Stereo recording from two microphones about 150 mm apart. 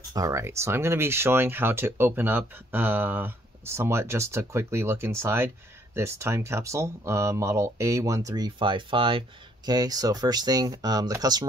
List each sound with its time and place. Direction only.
0.1 s speech: 20° right (ahead or behind)